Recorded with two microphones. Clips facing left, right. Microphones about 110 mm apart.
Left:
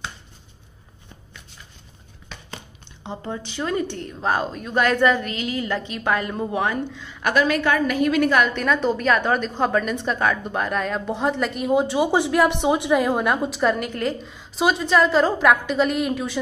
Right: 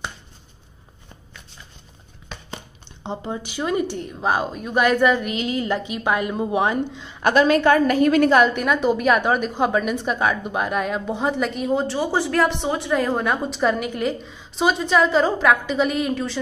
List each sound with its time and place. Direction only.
3.3 s a woman's voice: 10° right (ahead or behind)
5.3 s a woman's voice: 25° right (ahead or behind)
8.5 s a woman's voice: 10° right (ahead or behind)